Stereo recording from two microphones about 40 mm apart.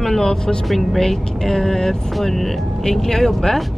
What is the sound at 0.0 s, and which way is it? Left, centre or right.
Speech, centre.